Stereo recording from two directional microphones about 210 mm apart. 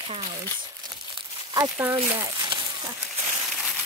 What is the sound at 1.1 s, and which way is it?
Crumpling, 15° right (ahead or behind).